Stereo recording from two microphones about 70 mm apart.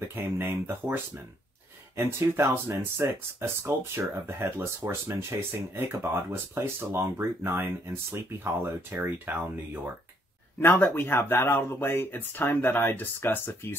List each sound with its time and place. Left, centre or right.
0.1 s speech: right
2.0 s speech: right
10.6 s speech: left